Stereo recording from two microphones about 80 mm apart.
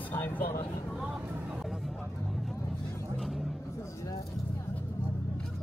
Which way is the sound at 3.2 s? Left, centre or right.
Centre.